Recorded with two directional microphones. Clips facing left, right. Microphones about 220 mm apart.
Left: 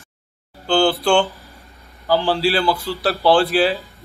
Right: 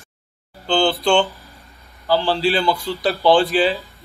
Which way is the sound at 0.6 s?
5° left (ahead or behind).